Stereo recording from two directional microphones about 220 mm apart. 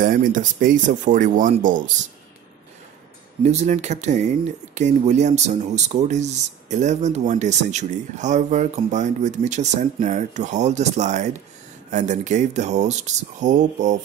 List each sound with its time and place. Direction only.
0.0 s speech: 35° right (ahead or behind)
3.4 s speech: 30° right (ahead or behind)